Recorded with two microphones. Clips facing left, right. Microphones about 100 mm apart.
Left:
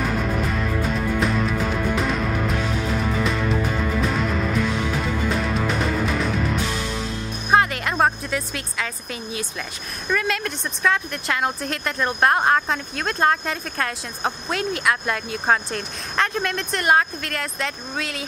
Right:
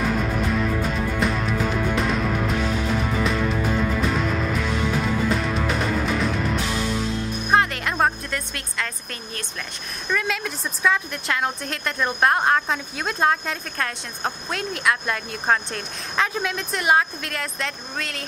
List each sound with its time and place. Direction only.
0.0 s music: centre (ahead or behind)
10.0 s a woman's voice: centre (ahead or behind)